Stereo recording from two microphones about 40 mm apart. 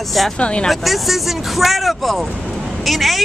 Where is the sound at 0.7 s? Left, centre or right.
Centre.